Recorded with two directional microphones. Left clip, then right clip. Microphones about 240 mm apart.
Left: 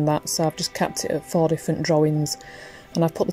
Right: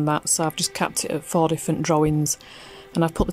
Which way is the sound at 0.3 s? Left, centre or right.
Right.